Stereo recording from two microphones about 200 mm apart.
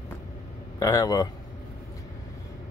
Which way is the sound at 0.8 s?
15° left (ahead or behind).